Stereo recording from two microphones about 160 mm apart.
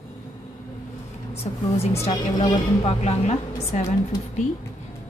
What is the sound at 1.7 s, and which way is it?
A woman's voice, 40° left (ahead or behind).